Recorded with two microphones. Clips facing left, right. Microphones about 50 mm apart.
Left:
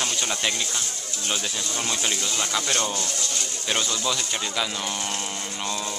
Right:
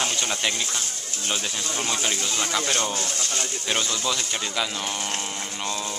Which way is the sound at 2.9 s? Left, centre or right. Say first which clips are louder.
Right 1 dB; right.